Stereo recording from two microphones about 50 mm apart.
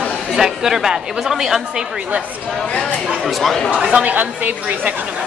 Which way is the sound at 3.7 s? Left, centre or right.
Right.